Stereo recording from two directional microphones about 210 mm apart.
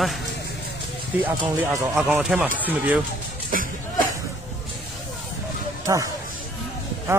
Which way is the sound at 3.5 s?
40° right (ahead or behind).